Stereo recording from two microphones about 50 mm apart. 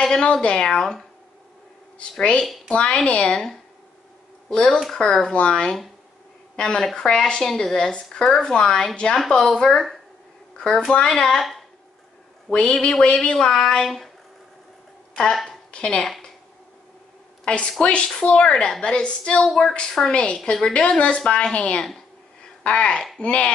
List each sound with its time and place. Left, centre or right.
0.0 s a woman's voice: centre
4.9 s a woman's voice: centre
6.8 s a woman's voice: centre
7.1 s a woman's voice: centre
10.9 s a woman's voice: centre
12.4 s a woman's voice: left; by 14.1 s centre
15.7 s a woman's voice: centre
17.5 s a woman's voice: centre
19.4 s a woman's voice: centre
20.1 s a woman's voice: left